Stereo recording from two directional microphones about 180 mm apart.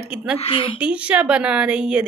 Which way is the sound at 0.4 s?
30° left (ahead or behind).